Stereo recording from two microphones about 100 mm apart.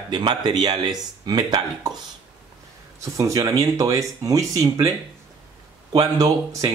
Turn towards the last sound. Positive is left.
turn(degrees=-35)  # may be behind; listen again after turning